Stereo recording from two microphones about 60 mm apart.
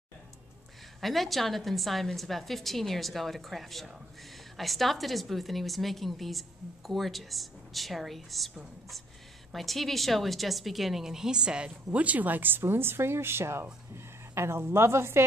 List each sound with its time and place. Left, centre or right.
1.0 s a woman's voice: centre
9.5 s a woman's voice: centre; by 15.2 s right